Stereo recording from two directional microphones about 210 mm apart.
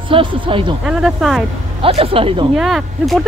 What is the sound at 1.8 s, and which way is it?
Speech, 25° right (ahead or behind).